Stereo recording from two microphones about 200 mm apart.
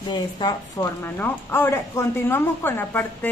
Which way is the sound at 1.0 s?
10° left (ahead or behind).